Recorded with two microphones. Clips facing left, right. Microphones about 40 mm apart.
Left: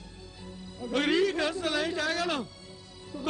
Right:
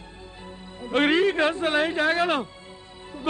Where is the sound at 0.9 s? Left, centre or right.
Right.